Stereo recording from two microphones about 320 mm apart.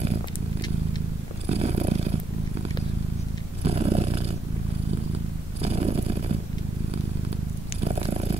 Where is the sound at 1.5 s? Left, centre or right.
Centre.